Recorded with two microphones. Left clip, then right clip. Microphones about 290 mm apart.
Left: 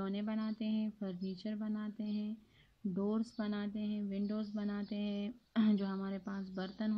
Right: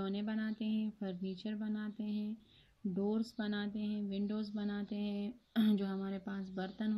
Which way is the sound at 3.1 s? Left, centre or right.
Centre.